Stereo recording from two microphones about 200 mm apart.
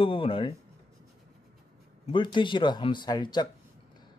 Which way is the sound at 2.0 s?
25° left (ahead or behind).